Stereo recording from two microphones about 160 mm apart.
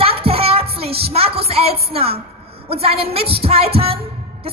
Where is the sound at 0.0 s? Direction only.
35° right (ahead or behind).